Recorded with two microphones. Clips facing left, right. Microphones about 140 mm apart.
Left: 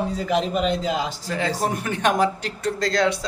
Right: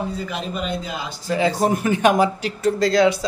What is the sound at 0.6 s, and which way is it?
Speech, 90° left.